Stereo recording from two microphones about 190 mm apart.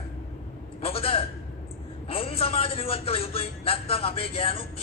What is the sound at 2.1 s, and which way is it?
A man's voice, 30° left (ahead or behind).